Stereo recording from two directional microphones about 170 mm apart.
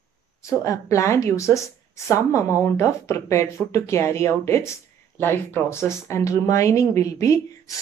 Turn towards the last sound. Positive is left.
turn(degrees=20)  # may be behind; listen again after turning